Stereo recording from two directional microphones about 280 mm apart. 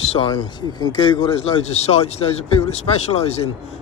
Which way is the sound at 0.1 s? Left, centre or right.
Centre.